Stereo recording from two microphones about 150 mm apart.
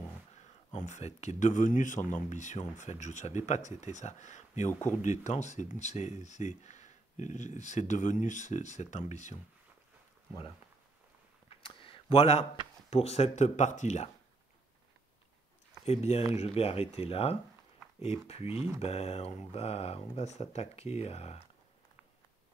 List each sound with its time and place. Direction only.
0.4 s speech: 50° left (ahead or behind)
11.6 s a sound: 35° left (ahead or behind)
12.9 s speech: 45° left (ahead or behind)
15.8 s speech: 45° left (ahead or behind)
18.5 s speech: 15° right (ahead or behind)
18.8 s speech: 45° left (ahead or behind)